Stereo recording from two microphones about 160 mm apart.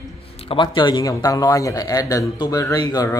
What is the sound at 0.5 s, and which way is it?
Speech, 30° left (ahead or behind).